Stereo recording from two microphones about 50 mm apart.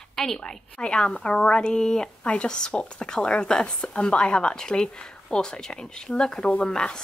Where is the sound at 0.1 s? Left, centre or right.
Centre.